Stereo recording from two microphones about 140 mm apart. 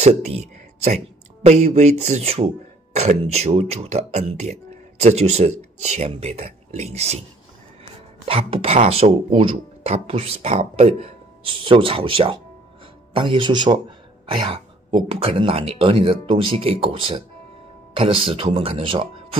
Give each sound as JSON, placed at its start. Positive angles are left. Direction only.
{"t": 0.0, "sound": "speech", "side_deg": -50}
{"t": 8.3, "sound": "speech", "side_deg": -45}